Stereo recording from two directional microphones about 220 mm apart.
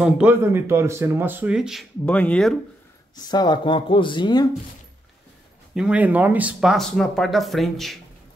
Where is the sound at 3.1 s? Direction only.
20° left (ahead or behind).